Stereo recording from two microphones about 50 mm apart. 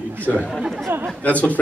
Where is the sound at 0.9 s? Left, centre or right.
Right.